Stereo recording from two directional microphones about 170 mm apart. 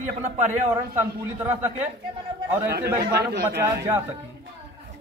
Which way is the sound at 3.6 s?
15° right (ahead or behind).